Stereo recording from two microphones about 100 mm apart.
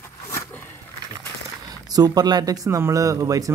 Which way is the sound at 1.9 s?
40° right (ahead or behind).